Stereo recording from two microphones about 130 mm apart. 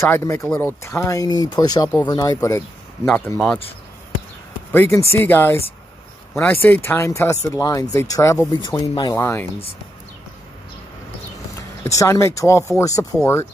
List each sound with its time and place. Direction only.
0.0 s speech: 20° left (ahead or behind)
4.7 s speech: 20° left (ahead or behind)
8.5 s speech: 35° left (ahead or behind)
9.2 s speech: 20° left (ahead or behind)
11.8 s speech: 20° left (ahead or behind)